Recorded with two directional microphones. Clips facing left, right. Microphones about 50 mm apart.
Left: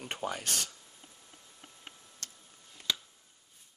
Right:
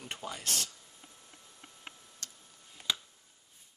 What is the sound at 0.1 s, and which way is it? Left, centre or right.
Speech, left.